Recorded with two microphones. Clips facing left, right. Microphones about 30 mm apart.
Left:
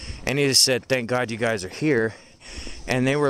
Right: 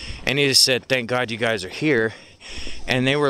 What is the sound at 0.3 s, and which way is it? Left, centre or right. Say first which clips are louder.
Speech: right 2 dB; right.